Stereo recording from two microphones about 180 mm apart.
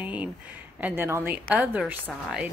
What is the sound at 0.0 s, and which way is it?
A woman's voice, 10° right (ahead or behind).